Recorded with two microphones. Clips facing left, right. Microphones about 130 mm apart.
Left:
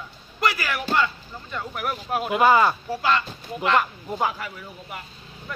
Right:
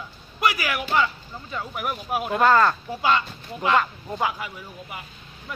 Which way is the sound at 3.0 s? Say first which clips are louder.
Right 2 dB; 20° right (ahead or behind).